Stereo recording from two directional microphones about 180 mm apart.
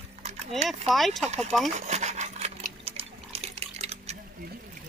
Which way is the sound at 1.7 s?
40° right (ahead or behind).